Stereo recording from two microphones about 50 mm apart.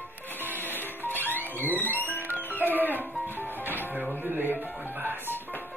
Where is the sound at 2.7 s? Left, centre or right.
Right.